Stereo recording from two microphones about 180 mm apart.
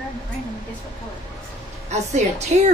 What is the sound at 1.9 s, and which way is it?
Speech, 40° right (ahead or behind).